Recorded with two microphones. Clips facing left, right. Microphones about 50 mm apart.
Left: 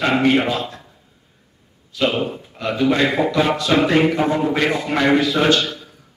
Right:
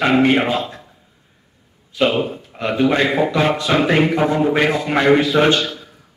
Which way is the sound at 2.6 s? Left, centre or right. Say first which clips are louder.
Right 1 dB; right.